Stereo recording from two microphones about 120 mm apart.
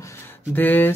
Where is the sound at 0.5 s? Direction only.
15° left (ahead or behind).